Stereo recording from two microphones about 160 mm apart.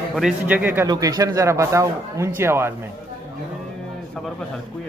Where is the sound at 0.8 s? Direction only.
25° right (ahead or behind).